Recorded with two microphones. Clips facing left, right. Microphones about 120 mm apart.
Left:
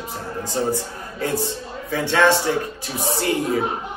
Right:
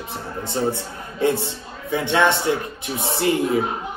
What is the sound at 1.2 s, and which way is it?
A man's voice, 20° right (ahead or behind).